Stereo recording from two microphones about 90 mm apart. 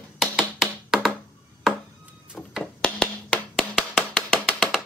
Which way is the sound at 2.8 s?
10° left (ahead or behind).